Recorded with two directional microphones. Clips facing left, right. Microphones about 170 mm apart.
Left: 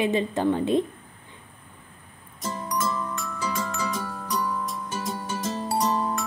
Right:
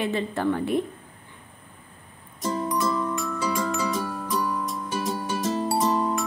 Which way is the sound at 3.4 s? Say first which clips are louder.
Right 2 dB; 10° right (ahead or behind).